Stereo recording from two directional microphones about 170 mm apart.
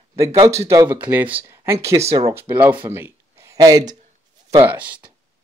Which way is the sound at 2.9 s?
15° right (ahead or behind).